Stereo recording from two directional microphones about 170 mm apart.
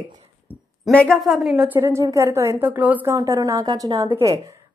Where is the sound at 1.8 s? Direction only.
15° right (ahead or behind).